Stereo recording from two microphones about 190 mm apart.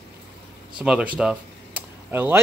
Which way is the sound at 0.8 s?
5° right (ahead or behind).